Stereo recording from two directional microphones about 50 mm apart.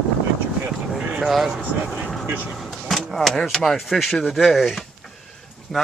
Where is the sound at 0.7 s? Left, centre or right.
Centre.